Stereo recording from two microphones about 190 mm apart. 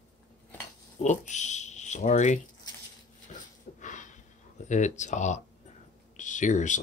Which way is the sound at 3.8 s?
40° left (ahead or behind).